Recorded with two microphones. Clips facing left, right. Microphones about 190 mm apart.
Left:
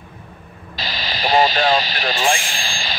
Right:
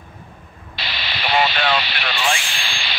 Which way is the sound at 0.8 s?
40° left (ahead or behind).